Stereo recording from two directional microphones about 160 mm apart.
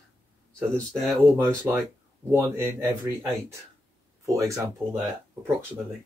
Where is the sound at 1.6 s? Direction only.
10° right (ahead or behind).